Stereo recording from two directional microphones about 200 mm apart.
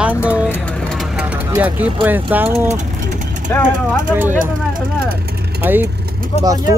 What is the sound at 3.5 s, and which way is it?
Speech, 10° left (ahead or behind).